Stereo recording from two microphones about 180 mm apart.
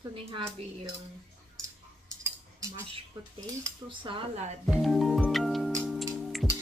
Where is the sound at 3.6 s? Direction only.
30° right (ahead or behind).